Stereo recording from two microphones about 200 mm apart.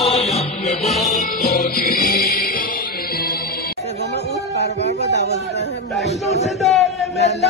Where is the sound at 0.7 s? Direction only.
Centre (ahead or behind).